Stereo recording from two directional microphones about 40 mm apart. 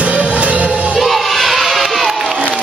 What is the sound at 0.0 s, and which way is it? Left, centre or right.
Music, right.